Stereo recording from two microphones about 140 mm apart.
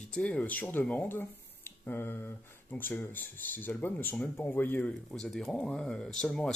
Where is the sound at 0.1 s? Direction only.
10° left (ahead or behind).